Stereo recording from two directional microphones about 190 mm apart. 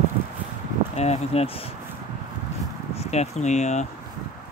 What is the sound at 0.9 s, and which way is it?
Speech, 35° left (ahead or behind).